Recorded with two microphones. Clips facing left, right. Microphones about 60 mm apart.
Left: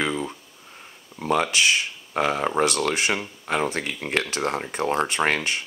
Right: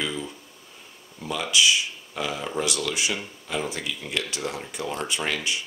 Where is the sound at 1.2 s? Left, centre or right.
Left.